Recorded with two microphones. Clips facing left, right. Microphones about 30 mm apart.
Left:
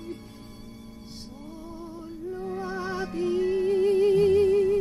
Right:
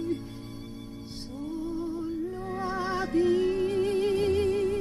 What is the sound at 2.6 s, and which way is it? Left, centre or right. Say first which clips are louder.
Music: right 4 dB; right.